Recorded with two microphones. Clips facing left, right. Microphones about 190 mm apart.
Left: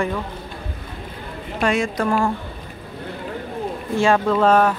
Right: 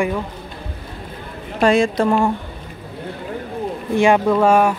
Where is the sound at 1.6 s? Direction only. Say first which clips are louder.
Right 5 dB; 30° right (ahead or behind).